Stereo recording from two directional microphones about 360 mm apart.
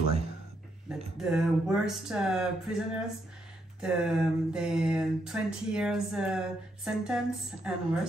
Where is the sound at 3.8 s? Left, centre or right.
Centre.